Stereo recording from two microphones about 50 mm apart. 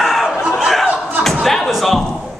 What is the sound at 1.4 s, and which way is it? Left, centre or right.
Speech, centre.